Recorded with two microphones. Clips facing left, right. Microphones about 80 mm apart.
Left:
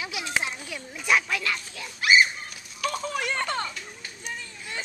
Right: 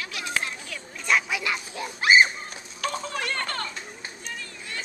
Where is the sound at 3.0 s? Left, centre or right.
Centre.